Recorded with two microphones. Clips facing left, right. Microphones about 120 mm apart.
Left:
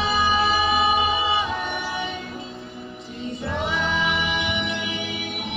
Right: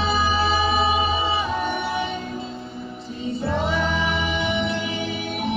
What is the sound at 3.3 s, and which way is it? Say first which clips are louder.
Music: right 3 dB; 35° right (ahead or behind).